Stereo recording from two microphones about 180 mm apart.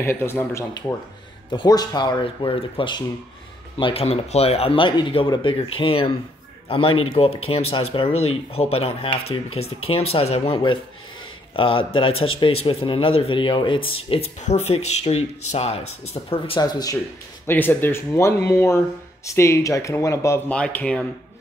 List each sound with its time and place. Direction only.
0.0 s a man's voice: 15° left (ahead or behind)